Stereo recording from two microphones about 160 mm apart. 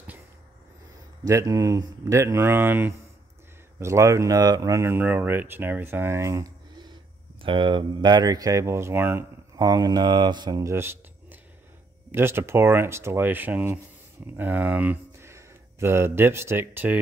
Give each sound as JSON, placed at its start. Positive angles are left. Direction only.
{"t": 1.2, "sound": "speech", "side_deg": -20}